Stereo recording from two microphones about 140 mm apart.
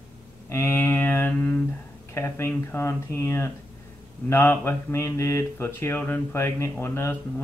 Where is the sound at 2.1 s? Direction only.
20° left (ahead or behind).